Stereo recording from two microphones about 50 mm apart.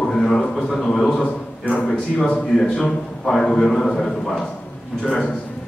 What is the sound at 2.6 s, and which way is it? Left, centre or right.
A man's voice, centre.